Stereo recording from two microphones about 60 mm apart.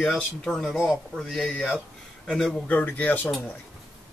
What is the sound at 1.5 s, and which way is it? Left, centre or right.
Speech, centre.